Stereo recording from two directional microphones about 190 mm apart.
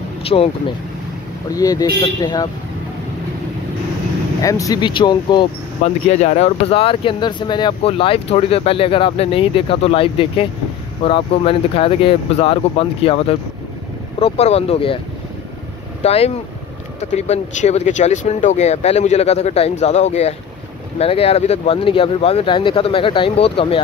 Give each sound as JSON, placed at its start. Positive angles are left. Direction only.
{"t": 0.3, "sound": "speech", "side_deg": 30}
{"t": 1.5, "sound": "speech", "side_deg": 20}
{"t": 4.4, "sound": "speech", "side_deg": 15}
{"t": 6.0, "sound": "speech", "side_deg": 35}
{"t": 16.0, "sound": "speech", "side_deg": 30}